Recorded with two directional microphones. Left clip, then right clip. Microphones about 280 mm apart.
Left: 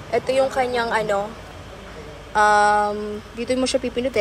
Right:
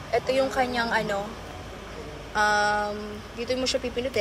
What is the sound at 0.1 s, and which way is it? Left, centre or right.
Speech, centre.